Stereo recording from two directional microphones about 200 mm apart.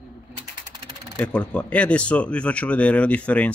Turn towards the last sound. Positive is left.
turn(degrees=5)  # may be behind; listen again after turning